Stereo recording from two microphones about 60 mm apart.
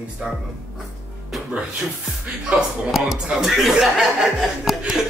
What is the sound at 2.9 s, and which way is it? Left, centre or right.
Speech, centre.